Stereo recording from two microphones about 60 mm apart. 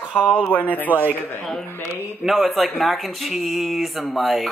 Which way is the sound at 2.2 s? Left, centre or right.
Centre.